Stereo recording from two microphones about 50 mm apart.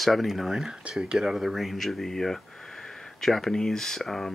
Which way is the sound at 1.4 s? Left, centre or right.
Centre.